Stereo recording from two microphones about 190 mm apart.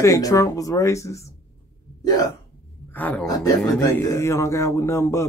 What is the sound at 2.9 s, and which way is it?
Speech, 10° left (ahead or behind).